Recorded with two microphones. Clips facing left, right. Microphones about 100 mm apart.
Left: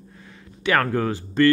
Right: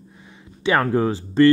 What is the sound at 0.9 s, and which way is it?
Speech, 25° right (ahead or behind).